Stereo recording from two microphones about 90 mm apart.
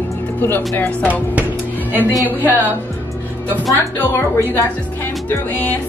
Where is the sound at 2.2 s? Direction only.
20° right (ahead or behind).